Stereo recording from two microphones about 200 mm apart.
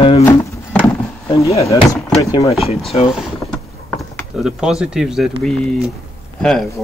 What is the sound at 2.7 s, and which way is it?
Speech, 30° left (ahead or behind).